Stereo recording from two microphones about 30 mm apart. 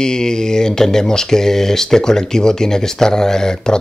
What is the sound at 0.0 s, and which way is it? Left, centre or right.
Speech, left.